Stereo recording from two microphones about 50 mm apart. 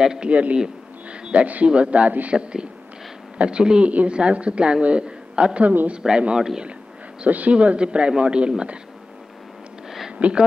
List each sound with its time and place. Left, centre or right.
0.0 s speech: centre
0.3 s a woman's voice: right
2.3 s a woman's voice: centre
7.2 s a woman's voice: right
9.8 s a sound: centre
10.1 s speech: right